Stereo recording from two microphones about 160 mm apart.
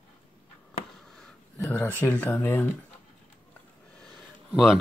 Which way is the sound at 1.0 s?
5° left (ahead or behind).